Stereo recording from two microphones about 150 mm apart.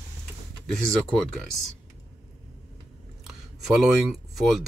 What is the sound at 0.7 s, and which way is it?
Speech, 5° left (ahead or behind).